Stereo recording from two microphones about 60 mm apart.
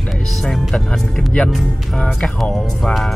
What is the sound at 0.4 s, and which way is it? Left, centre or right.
Speech, centre.